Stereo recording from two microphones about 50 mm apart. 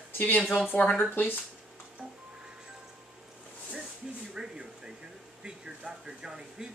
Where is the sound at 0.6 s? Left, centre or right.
Left.